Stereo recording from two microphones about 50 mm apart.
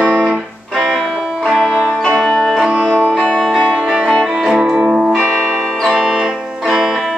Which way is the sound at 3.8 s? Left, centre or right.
Centre.